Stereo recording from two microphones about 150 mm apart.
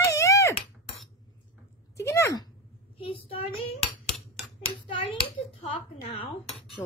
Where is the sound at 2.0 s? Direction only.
20° left (ahead or behind).